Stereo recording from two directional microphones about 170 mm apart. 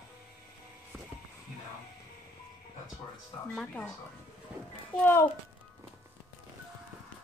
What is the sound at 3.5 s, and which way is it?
Speech, 5° left (ahead or behind).